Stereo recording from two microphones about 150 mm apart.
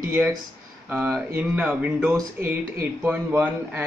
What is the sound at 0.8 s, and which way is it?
A man's voice, 10° right (ahead or behind).